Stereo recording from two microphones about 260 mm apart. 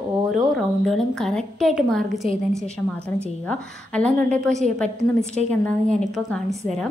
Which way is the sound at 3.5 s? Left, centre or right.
Centre.